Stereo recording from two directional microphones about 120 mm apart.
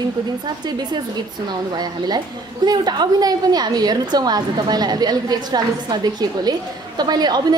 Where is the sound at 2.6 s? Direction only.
35° right (ahead or behind).